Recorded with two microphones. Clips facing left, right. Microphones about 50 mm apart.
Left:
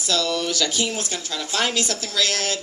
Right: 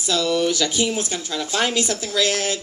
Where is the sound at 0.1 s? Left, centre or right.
Centre.